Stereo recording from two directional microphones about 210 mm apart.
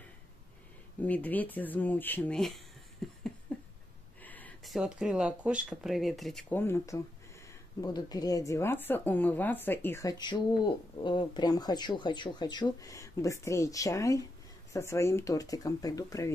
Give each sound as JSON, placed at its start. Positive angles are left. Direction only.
{"t": 1.0, "sound": "speech", "side_deg": 5}
{"t": 3.0, "sound": "a sound", "side_deg": 0}
{"t": 4.2, "sound": "speech", "side_deg": 10}